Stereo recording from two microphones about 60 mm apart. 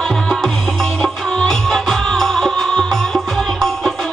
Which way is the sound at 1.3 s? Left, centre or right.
Centre.